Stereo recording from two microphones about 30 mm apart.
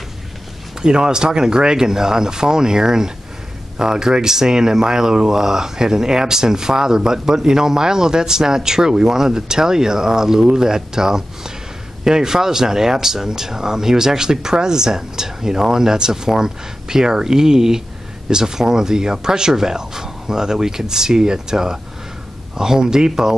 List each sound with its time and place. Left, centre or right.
0.8 s speech: right